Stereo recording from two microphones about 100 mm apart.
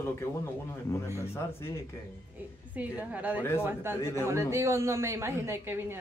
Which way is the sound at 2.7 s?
15° right (ahead or behind).